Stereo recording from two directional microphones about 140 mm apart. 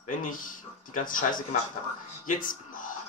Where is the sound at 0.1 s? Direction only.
70° left (ahead or behind).